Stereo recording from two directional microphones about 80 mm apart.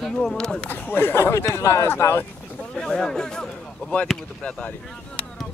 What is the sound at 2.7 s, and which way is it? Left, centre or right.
Speech, centre.